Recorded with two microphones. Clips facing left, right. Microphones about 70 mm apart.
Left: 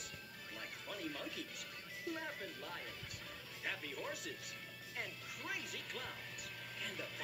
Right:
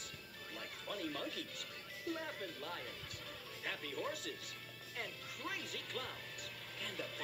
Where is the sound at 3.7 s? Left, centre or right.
Centre.